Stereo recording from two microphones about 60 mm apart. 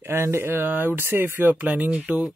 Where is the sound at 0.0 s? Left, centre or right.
Right.